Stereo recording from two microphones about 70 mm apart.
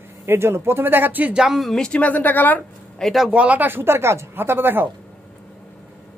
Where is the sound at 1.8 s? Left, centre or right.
Centre.